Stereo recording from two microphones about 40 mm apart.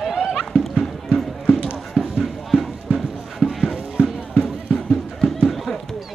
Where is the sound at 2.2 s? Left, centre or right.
Centre.